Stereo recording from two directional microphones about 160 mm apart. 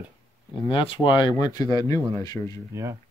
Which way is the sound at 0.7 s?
30° left (ahead or behind).